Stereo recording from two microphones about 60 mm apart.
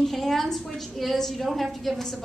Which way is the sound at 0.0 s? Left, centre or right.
Centre.